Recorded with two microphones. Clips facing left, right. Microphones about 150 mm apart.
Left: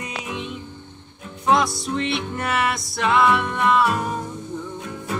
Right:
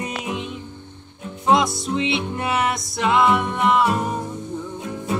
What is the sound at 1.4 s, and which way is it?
Music, 20° right (ahead or behind).